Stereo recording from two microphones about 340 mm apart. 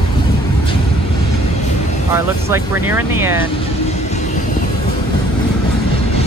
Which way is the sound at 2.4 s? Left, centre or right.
Centre.